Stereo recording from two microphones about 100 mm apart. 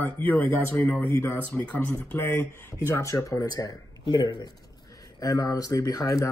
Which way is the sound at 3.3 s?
40° left (ahead or behind).